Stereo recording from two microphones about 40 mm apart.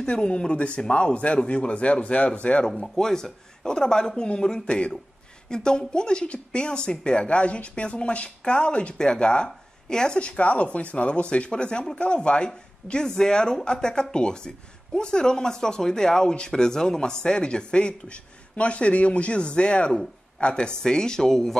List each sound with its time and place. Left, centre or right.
0.0 s speech: left
2.8 s speech: centre
10.1 s speech: left; by 21.5 s centre